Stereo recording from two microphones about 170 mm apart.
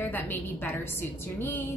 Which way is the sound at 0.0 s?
10° left (ahead or behind).